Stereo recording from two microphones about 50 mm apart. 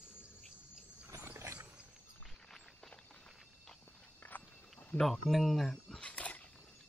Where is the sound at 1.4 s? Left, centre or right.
Right.